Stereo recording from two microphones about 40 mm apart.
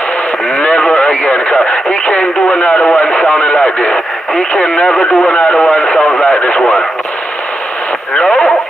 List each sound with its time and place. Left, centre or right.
0.6 s radio: left
2.6 s speech: left
3.0 s radio: left
4.6 s speech: left
6.2 s speech: left
8.1 s speech: left